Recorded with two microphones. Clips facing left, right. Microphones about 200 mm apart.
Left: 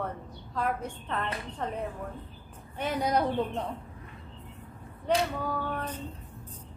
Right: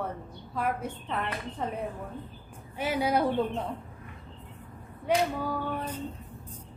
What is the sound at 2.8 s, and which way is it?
Speech, 5° right (ahead or behind).